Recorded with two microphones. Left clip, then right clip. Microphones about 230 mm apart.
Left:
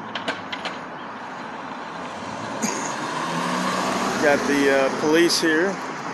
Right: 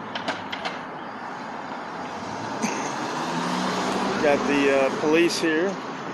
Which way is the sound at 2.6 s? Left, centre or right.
Centre.